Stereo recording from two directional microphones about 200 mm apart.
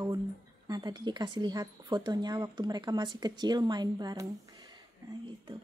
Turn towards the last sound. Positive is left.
turn(degrees=-20)  # may be behind; listen again after turning